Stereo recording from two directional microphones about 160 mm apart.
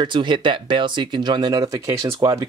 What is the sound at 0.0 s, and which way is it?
Speech, 30° right (ahead or behind).